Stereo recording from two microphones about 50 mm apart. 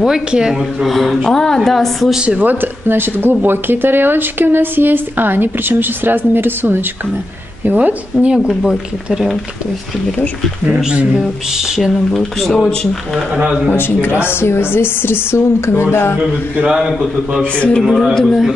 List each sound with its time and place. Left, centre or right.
0.0 s speech: centre
0.8 s speech: centre
2.1 s speech: right
2.4 s speech: right
7.6 s a woman's voice: right
8.6 s speech: centre
11.1 s speech: centre
12.1 s speech: centre
13.7 s speech: left
17.6 s speech: left
18.1 s speech: centre